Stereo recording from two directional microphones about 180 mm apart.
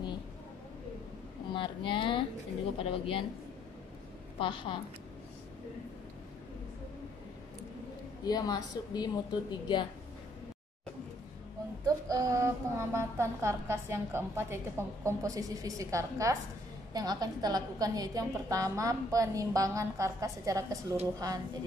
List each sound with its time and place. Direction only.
1.5 s a woman's voice: 25° left (ahead or behind)
4.4 s a woman's voice: 25° left (ahead or behind)
8.2 s a woman's voice: 20° left (ahead or behind)
11.8 s a sound: 20° right (ahead or behind)
16.9 s a woman's voice: 20° right (ahead or behind)